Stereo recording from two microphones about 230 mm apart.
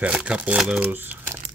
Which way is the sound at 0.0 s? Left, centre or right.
Centre.